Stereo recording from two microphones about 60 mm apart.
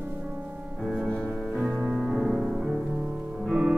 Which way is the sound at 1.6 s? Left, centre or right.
Centre.